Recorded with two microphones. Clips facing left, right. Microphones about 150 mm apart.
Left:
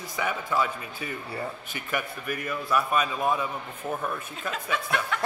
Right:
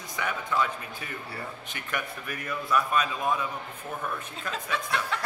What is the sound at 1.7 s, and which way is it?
A man's voice, 5° left (ahead or behind).